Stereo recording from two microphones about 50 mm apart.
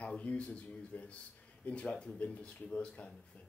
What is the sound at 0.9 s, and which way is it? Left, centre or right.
Speech, left.